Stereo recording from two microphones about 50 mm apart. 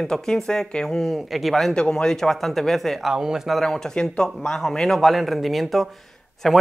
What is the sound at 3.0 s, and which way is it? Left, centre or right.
Speech, centre.